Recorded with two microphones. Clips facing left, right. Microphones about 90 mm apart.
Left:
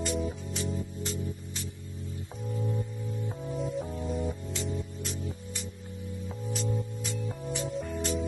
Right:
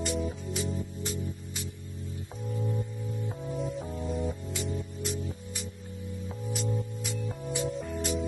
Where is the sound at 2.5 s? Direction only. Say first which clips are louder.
Even; 5° right (ahead or behind).